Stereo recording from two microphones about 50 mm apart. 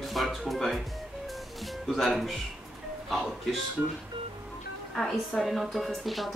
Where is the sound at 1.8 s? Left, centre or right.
Centre.